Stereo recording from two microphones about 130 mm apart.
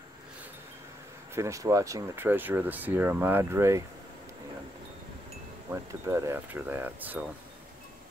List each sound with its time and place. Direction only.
1.3 s speech: 25° right (ahead or behind)
2.2 s speech: 15° right (ahead or behind)
6.0 s speech: 20° right (ahead or behind)